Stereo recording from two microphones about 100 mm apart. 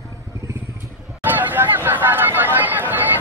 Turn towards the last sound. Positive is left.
turn(degrees=-20)  # may be behind; listen again after turning